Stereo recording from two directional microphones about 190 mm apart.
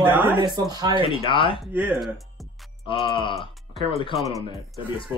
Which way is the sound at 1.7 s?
10° right (ahead or behind).